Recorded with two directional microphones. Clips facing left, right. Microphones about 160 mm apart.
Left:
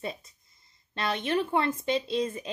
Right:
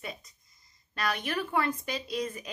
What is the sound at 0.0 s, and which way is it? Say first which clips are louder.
A woman's voice: left 5 dB; 30° left (ahead or behind).